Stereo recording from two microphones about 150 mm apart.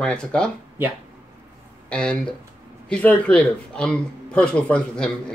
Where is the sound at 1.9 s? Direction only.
5° left (ahead or behind).